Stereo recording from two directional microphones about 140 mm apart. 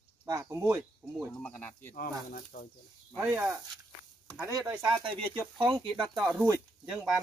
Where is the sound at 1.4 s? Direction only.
10° left (ahead or behind).